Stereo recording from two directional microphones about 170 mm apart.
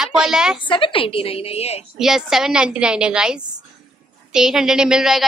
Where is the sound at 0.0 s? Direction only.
5° right (ahead or behind).